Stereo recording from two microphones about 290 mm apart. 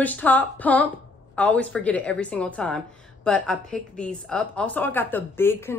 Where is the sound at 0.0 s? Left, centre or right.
Centre.